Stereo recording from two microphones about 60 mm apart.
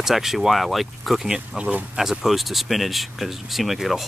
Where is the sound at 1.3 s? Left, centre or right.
Centre.